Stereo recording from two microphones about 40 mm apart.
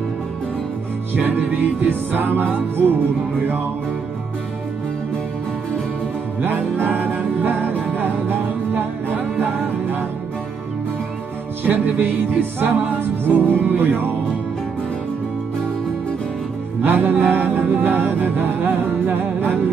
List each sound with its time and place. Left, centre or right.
1.5 s music: right
6.4 s music: right
11.6 s music: right
16.8 s music: right